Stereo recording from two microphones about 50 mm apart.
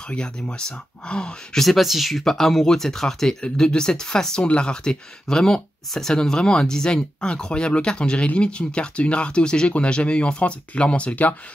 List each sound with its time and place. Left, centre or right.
0.1 s speech: centre
1.6 s speech: centre
2.2 s speech: centre; by 11.3 s left